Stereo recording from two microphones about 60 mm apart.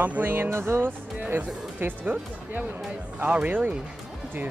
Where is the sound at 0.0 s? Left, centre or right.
Right.